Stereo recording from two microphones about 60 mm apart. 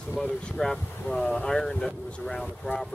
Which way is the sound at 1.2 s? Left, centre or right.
Centre.